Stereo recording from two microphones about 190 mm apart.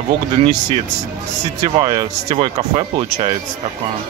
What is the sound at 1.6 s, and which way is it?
Speech, 20° right (ahead or behind).